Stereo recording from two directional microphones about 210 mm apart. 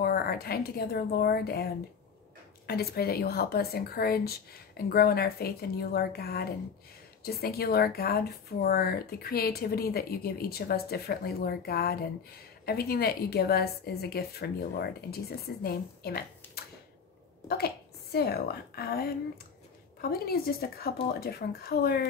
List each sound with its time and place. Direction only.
0.0 s a woman's voice: 45° left (ahead or behind)
18.1 s speech: 50° left (ahead or behind)